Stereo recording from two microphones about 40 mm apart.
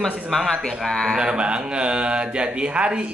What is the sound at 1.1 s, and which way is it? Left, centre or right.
A man's voice, right.